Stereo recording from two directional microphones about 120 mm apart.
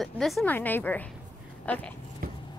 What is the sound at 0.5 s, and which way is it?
A woman's voice, 15° left (ahead or behind).